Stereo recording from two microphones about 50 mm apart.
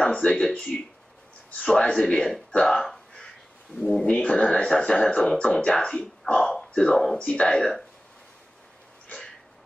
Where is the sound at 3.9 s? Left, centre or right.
Centre.